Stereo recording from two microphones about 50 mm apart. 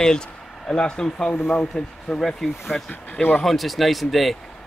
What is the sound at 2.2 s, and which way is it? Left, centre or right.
Speech, centre.